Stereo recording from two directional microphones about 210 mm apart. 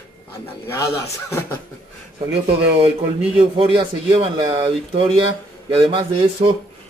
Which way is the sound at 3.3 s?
25° right (ahead or behind).